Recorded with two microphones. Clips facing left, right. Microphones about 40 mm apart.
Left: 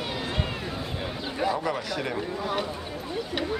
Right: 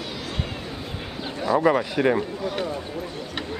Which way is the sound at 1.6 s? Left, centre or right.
Right.